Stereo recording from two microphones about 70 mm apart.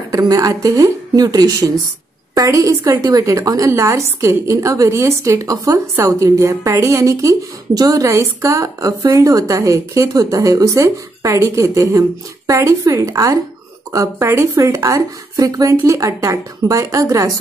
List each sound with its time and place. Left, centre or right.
0.1 s speech: right
2.3 s a woman's voice: right
13.9 s a woman's voice: right